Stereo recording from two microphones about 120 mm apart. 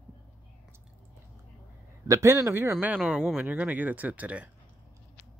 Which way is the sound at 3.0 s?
Centre (ahead or behind).